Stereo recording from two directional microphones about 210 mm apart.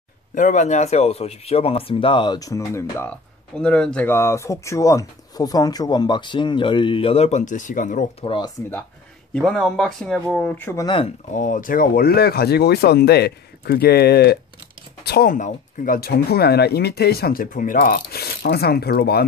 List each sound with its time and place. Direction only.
0.3 s speech: 35° left (ahead or behind)
9.3 s speech: centre (ahead or behind); by 11.1 s 20° left (ahead or behind)
11.3 s speech: 40° left (ahead or behind)